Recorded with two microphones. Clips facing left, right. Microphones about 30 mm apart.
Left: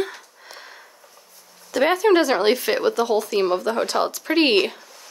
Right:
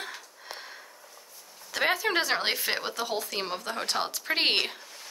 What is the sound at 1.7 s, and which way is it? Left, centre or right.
Speech, centre.